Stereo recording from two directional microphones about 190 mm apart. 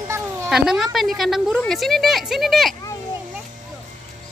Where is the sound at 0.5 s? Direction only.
5° right (ahead or behind).